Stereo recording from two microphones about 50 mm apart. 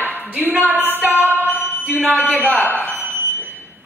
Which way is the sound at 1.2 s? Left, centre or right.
Right.